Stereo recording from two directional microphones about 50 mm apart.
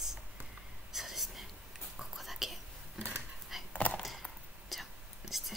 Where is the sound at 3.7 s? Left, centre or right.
Left.